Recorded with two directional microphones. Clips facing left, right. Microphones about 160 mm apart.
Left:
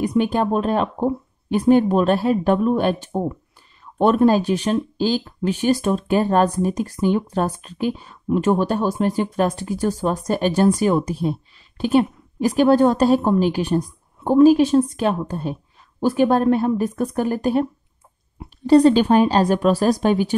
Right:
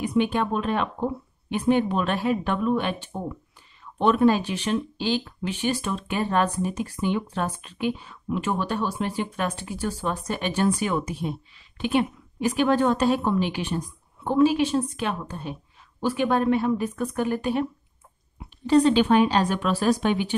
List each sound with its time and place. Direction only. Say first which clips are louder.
0.0 s speech: left 4 dB; 40° left (ahead or behind)
18.7 s speech: left 5 dB; 40° left (ahead or behind)